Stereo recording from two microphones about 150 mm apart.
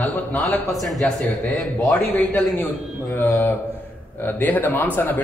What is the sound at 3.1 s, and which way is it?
A man's voice, 15° left (ahead or behind).